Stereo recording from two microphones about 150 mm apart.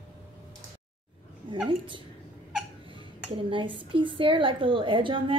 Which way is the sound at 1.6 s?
35° right (ahead or behind).